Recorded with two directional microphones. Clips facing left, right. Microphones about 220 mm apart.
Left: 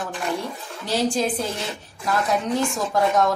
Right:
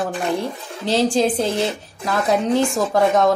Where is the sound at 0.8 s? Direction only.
25° right (ahead or behind).